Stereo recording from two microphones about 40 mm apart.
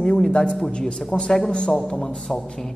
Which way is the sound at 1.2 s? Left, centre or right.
Left.